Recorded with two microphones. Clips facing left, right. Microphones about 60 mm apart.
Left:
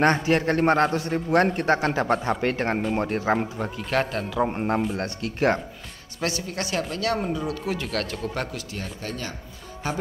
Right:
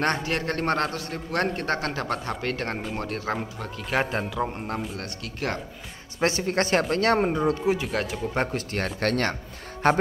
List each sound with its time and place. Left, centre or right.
0.0 s a man's voice: centre
0.9 s speech: left
1.5 s a man's voice: centre
3.9 s speech: centre
4.6 s speech: left
6.1 s speech: right
7.8 s speech: centre
8.4 s speech: right
8.7 s speech: right